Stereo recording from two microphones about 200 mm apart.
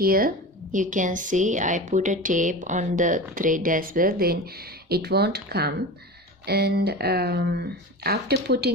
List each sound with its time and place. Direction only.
0.0 s a woman's voice: 45° right (ahead or behind)